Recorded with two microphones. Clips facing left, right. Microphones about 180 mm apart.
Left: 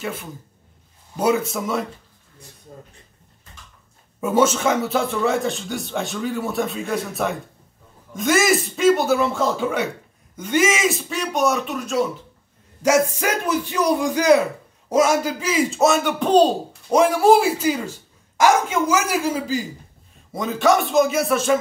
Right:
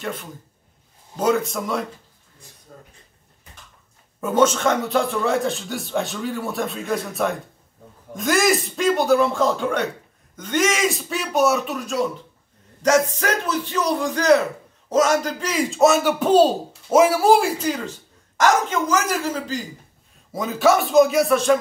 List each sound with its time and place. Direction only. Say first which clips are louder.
0.0 s speech: left 1 dB; 5° left (ahead or behind)
2.7 s speech: left 3 dB; 15° left (ahead or behind)
4.2 s speech: even; 10° left (ahead or behind)
20.3 s speech: even; centre (ahead or behind)